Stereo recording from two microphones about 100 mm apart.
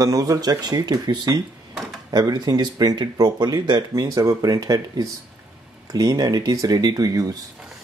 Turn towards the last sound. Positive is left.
turn(degrees=-35)  # may be behind; listen again after turning